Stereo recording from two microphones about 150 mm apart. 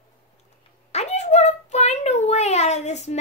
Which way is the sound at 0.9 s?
50° left (ahead or behind).